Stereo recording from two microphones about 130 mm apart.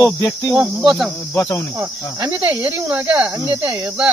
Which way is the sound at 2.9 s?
15° right (ahead or behind).